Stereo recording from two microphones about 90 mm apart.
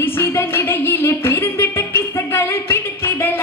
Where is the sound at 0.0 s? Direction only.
30° left (ahead or behind).